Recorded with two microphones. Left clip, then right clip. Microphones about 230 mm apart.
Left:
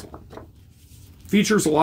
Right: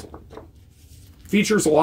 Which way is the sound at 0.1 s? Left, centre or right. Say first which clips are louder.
Even; left.